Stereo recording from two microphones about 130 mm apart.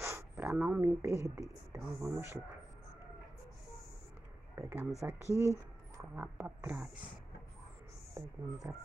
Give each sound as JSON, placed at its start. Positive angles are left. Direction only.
{"t": 0.0, "sound": "speech", "side_deg": -20}
{"t": 4.6, "sound": "speech", "side_deg": -20}
{"t": 6.1, "sound": "a sound", "side_deg": -10}